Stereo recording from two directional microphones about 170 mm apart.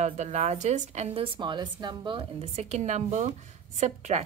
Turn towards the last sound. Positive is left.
turn(degrees=-40)  # may be behind; listen again after turning